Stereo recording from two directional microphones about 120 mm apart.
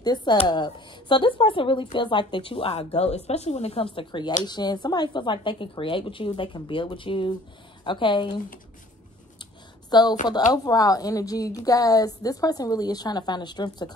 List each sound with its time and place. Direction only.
0.0 s a woman's voice: 35° left (ahead or behind)
9.4 s a sound: 35° left (ahead or behind)
10.5 s a woman's voice: 30° left (ahead or behind)